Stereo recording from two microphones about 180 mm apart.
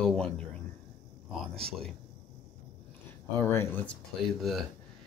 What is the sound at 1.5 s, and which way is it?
Speech, 35° right (ahead or behind).